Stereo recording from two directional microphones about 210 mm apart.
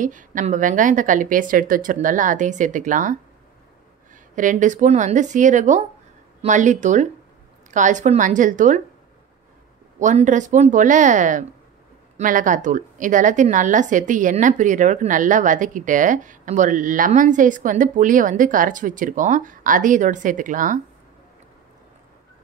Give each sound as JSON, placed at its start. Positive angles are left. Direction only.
{"t": 0.0, "sound": "a woman's voice", "side_deg": -40}
{"t": 9.9, "sound": "a woman's voice", "side_deg": -35}